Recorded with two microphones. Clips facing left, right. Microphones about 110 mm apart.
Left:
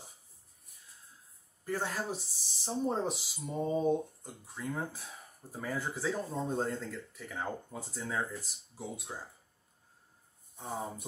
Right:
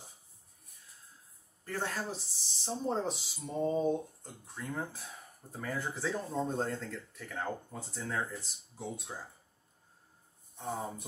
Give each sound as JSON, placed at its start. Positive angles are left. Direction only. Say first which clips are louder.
{"t": 1.6, "sound": "speech", "louder": "left 2 dB", "side_deg": 5}
{"t": 10.6, "sound": "speech", "louder": "right 1 dB", "side_deg": 0}